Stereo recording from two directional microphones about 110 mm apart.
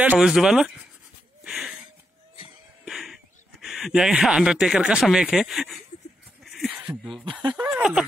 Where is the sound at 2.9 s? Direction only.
5° right (ahead or behind).